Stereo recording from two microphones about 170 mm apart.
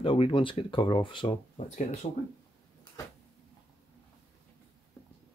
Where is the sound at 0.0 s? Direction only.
30° left (ahead or behind).